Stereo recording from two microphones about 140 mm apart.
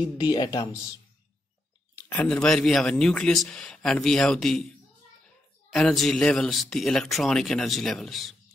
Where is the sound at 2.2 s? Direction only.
5° left (ahead or behind).